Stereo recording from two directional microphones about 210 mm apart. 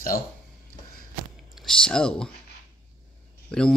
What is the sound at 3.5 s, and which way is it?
Speech, 5° left (ahead or behind).